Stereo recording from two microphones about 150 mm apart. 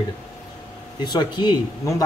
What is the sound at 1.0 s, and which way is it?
Speech, 30° left (ahead or behind).